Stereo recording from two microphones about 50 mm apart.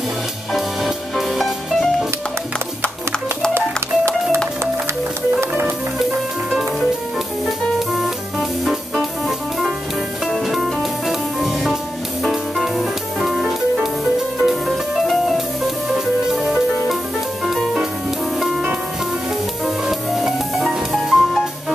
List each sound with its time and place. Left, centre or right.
0.5 s music: centre
3.5 s music: right
5.4 s music: right
7.4 s music: centre
10.2 s music: centre
19.6 s music: centre